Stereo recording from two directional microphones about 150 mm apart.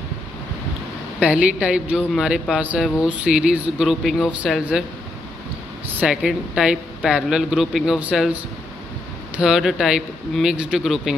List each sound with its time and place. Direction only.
1.2 s speech: 5° right (ahead or behind)
5.9 s speech: 10° right (ahead or behind)
9.4 s speech: centre (ahead or behind)